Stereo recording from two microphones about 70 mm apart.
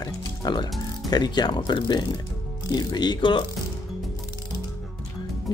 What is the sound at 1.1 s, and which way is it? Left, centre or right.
Speech, left.